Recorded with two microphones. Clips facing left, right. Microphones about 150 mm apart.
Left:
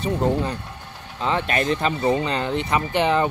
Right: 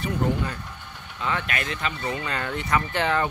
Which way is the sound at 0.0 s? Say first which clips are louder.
Left 4 dB; 30° left (ahead or behind).